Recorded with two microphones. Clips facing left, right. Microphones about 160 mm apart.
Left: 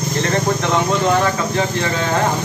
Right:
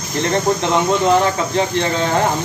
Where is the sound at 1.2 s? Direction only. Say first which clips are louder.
Right 1 dB; 30° right (ahead or behind).